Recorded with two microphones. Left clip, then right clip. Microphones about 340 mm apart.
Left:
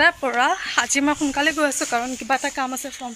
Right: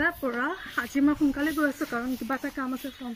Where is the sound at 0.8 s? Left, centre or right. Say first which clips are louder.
Left 3 dB; left.